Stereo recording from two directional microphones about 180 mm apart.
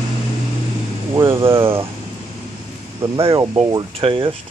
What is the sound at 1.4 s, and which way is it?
Speech, 30° right (ahead or behind).